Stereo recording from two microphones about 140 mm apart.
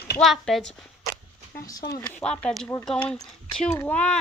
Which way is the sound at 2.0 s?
10° left (ahead or behind).